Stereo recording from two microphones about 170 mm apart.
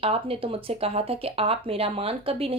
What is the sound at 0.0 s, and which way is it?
Speech, 35° right (ahead or behind).